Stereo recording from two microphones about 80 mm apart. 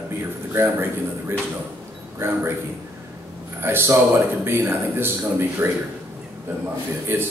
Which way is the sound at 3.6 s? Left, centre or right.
Right.